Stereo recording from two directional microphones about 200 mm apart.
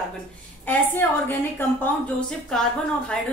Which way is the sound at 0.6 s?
10° left (ahead or behind).